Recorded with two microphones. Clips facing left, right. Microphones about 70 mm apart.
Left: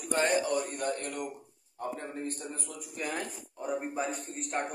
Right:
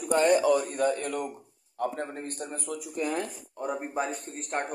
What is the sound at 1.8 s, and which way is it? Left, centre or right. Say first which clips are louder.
Speech: right 6 dB; right.